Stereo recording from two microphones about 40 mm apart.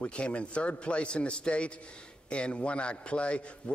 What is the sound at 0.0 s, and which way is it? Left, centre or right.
A man's voice, left.